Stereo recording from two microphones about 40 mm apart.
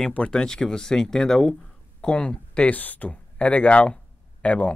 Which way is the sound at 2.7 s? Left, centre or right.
Left.